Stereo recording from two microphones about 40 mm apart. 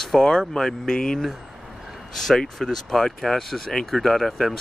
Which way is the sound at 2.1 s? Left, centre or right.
Centre.